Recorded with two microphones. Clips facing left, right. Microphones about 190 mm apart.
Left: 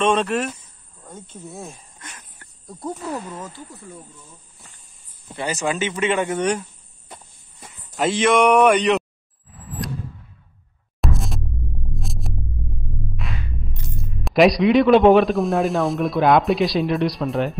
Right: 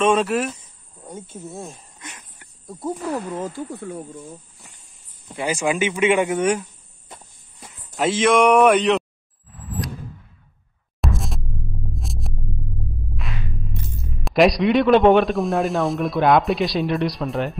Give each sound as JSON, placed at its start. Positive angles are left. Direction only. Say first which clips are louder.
{"t": 0.0, "sound": "speech", "louder": "right 1 dB", "side_deg": -5}
{"t": 2.0, "sound": "a sound", "louder": "right 2 dB", "side_deg": -15}
{"t": 3.3, "sound": "speech", "louder": "right 6 dB", "side_deg": -30}
{"t": 3.5, "sound": "speech", "louder": "right 9 dB", "side_deg": -60}
{"t": 5.3, "sound": "speech", "louder": "right 2 dB", "side_deg": -10}
{"t": 7.9, "sound": "speech", "louder": "even", "side_deg": 0}
{"t": 9.5, "sound": "a sound", "louder": "right 2 dB", "side_deg": 0}
{"t": 11.0, "sound": "music", "louder": "left 1 dB", "side_deg": 0}
{"t": 13.1, "sound": "speech", "louder": "right 2 dB", "side_deg": 0}